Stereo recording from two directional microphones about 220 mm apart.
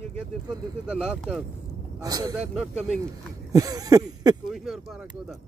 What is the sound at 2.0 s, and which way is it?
Speech, 15° right (ahead or behind).